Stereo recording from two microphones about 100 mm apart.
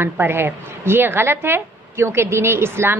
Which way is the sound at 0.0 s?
20° right (ahead or behind).